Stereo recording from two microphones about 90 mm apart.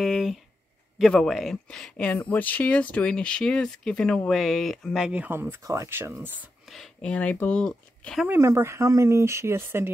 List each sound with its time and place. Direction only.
0.0 s a sound: 5° right (ahead or behind)
1.1 s speech: 5° left (ahead or behind)
5.2 s speech: 25° right (ahead or behind)
5.6 s speech: 40° right (ahead or behind)
5.9 s speech: 25° right (ahead or behind)
7.0 s speech: 15° left (ahead or behind)
8.3 s speech: 30° right (ahead or behind)